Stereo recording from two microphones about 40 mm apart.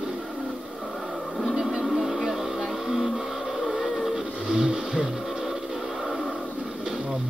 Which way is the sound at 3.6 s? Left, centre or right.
Centre.